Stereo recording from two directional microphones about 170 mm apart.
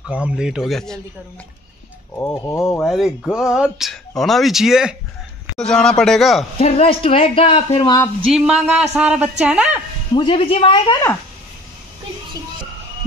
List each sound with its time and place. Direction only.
0.1 s speech: 5° right (ahead or behind)
2.1 s speech: 15° left (ahead or behind)
2.8 s speech: centre (ahead or behind)
6.6 s speech: 35° left (ahead or behind)
8.3 s speech: 5° right (ahead or behind)
10.1 s speech: 30° left (ahead or behind)